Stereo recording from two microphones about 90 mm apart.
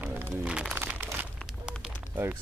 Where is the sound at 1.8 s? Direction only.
20° right (ahead or behind).